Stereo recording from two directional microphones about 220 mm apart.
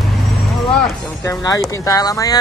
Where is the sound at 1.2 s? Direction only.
15° left (ahead or behind).